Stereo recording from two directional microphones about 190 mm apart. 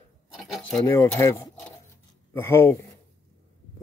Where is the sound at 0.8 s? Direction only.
15° left (ahead or behind).